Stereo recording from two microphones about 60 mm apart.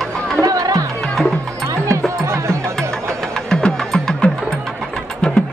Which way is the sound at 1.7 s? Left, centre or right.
Right.